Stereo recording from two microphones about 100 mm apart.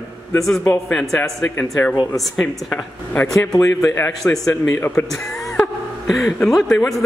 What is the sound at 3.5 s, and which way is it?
Speech, 35° left (ahead or behind).